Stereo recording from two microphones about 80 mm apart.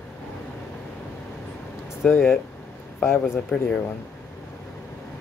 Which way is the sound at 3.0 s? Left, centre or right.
Left.